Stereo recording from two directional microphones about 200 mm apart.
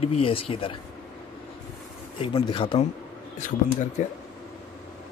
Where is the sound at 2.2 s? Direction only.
25° left (ahead or behind).